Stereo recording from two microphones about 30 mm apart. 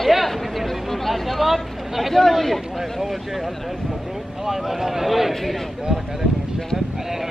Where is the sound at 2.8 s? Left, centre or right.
Centre.